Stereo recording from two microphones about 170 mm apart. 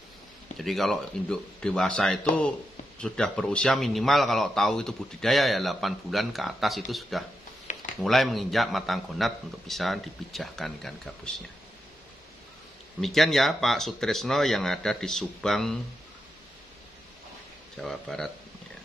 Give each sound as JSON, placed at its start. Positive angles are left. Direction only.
{"t": 0.6, "sound": "a man's voice", "side_deg": 0}
{"t": 7.7, "sound": "a sound", "side_deg": 45}
{"t": 8.0, "sound": "a man's voice", "side_deg": 0}
{"t": 13.0, "sound": "a man's voice", "side_deg": 0}
{"t": 17.7, "sound": "a man's voice", "side_deg": 0}